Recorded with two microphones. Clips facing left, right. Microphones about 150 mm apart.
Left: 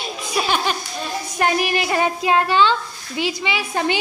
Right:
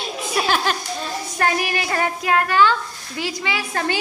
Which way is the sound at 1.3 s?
20° left (ahead or behind).